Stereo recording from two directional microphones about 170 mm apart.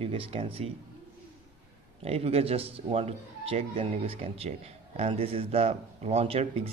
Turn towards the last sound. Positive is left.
turn(degrees=-35)  # may be behind; listen again after turning